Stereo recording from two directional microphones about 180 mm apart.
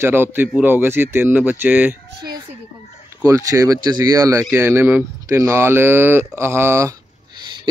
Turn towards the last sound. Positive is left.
turn(degrees=-15)  # may be behind; listen again after turning